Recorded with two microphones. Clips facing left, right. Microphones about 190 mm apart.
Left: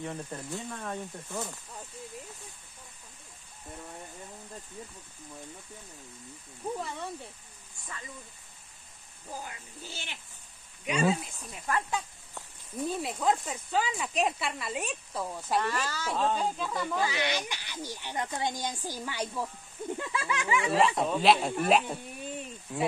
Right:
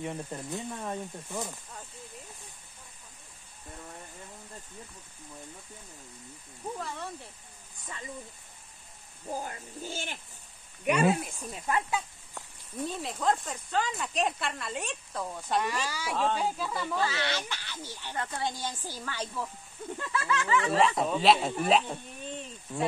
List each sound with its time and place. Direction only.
0.0 s speech: 15° right (ahead or behind)
9.3 s speech: 45° right (ahead or behind)
10.8 s speech: 60° right (ahead or behind)
11.3 s speech: 20° right (ahead or behind)
12.7 s speech: 5° left (ahead or behind)
15.6 s speech: 10° right (ahead or behind); by 20.7 s 15° left (ahead or behind)
20.7 s speech: centre (ahead or behind)